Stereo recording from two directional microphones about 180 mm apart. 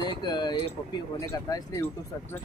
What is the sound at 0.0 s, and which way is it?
Speech, 25° left (ahead or behind).